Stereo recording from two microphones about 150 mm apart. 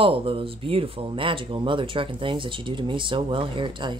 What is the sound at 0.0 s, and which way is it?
Speech, 40° right (ahead or behind).